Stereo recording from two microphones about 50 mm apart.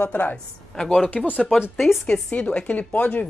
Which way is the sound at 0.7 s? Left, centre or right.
Centre.